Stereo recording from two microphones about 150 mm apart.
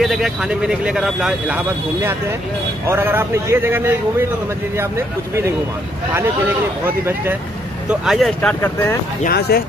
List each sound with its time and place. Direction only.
0.0 s speech: centre (ahead or behind)
2.9 s a man's voice: 15° right (ahead or behind)
7.9 s speech: 5° right (ahead or behind)
8.4 s speech: 10° left (ahead or behind)
9.2 s speech: 90° left